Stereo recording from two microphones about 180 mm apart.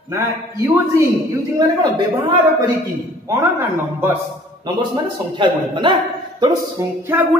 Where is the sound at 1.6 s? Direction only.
25° right (ahead or behind).